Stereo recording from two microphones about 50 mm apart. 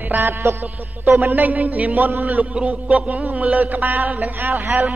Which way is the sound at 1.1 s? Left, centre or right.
Right.